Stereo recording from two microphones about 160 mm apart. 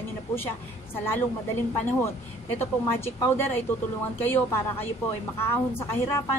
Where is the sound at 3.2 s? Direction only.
15° left (ahead or behind).